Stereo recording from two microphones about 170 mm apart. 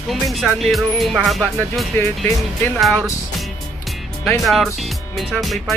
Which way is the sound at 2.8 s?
Centre (ahead or behind).